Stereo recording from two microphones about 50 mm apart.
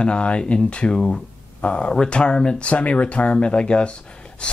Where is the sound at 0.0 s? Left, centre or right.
Left.